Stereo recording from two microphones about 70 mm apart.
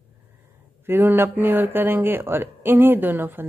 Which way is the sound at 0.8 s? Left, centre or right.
Right.